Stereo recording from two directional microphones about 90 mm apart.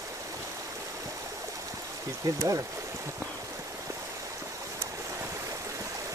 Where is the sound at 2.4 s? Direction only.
40° right (ahead or behind).